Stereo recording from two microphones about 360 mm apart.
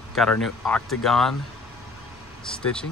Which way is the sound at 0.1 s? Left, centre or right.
Centre.